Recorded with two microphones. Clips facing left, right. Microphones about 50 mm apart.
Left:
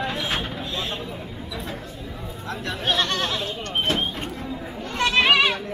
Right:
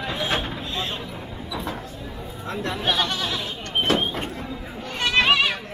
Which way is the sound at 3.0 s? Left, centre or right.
Left.